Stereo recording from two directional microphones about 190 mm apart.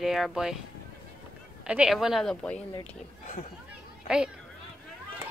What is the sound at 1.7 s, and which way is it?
Speech, 5° right (ahead or behind).